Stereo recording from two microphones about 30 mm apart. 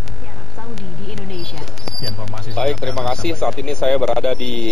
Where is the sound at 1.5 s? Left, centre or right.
Centre.